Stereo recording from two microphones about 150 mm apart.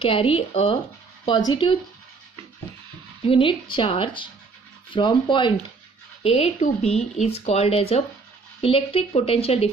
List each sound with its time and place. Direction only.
0.0 s a woman's voice: 35° left (ahead or behind)
1.2 s a woman's voice: 30° left (ahead or behind)
3.3 s a woman's voice: 35° left (ahead or behind)